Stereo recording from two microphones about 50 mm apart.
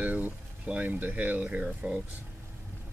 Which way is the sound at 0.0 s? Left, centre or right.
Right.